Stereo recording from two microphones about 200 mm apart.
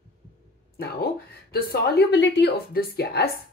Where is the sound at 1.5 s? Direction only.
55° left (ahead or behind).